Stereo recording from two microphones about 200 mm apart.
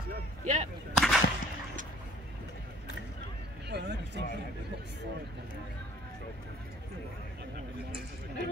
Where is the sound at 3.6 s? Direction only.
60° right (ahead or behind).